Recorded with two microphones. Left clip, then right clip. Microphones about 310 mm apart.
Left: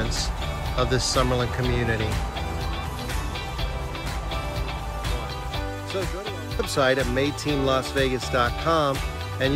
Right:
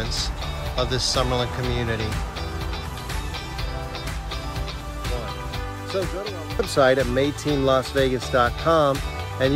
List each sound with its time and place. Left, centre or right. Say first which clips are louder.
0.7 s speech: even; centre
6.6 s speech: right 4 dB; centre